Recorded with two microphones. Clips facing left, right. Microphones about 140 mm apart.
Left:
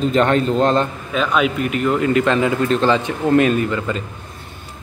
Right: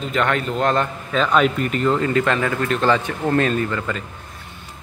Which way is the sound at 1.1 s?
5° left (ahead or behind).